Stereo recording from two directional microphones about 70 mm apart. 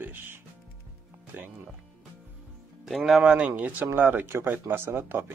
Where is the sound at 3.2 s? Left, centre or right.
Centre.